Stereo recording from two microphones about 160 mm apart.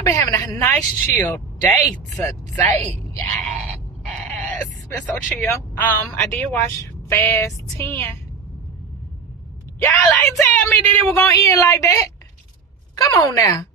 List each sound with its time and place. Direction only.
0.0 s speech: 20° left (ahead or behind)
4.1 s a sound: 5° left (ahead or behind)
4.9 s speech: 10° left (ahead or behind)
10.0 s a woman's voice: 5° left (ahead or behind)